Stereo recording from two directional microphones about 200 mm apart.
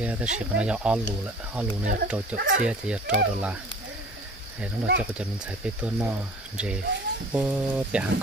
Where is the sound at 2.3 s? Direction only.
40° right (ahead or behind).